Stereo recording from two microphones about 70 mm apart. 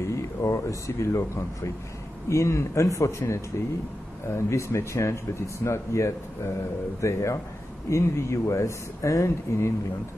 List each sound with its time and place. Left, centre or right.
0.0 s speech: left